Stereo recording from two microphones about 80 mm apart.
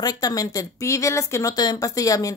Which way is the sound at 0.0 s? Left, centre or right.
Left.